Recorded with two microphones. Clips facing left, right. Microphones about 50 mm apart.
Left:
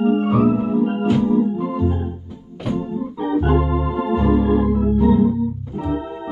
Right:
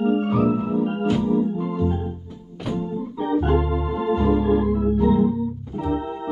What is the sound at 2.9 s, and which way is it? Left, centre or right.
Organ, centre.